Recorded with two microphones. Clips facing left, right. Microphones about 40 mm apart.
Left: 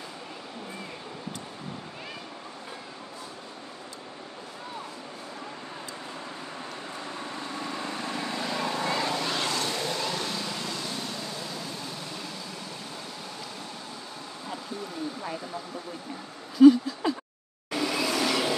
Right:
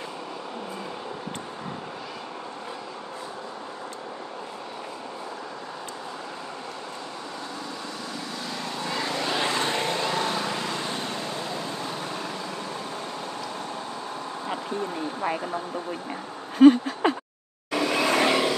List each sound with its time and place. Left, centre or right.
8.0 s vehicle: left
8.5 s vehicle: centre
8.9 s vehicle: centre; by 11.9 s right
15.2 s speech: right
16.5 s a sound: right
17.6 s vehicle: right